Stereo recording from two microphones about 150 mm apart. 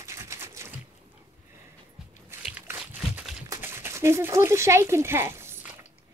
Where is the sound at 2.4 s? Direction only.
10° right (ahead or behind).